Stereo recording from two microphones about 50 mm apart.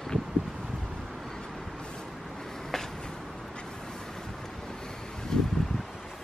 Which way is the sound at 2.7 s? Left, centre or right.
Centre.